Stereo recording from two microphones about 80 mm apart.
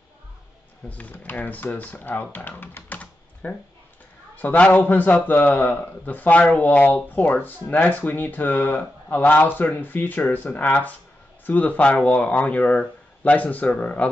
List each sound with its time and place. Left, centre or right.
0.8 s speech: centre